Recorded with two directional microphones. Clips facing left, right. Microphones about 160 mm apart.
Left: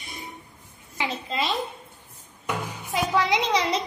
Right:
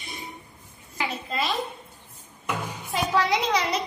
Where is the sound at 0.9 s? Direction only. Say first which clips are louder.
Left 1 dB; 20° left (ahead or behind).